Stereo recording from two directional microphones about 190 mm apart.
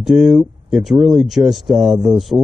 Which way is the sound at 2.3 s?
15° right (ahead or behind).